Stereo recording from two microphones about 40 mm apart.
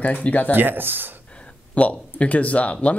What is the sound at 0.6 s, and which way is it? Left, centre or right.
Speech, right.